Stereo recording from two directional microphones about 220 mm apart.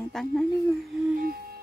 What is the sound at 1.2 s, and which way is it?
Music, 40° right (ahead or behind).